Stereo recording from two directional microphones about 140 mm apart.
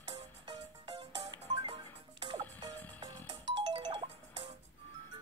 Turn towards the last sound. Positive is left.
turn(degrees=-40)  # may be behind; listen again after turning